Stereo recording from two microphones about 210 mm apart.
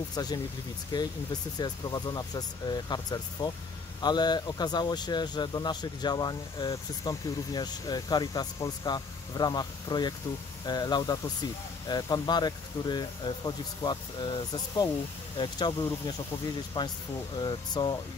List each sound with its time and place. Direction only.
0.1 s speech: 20° left (ahead or behind)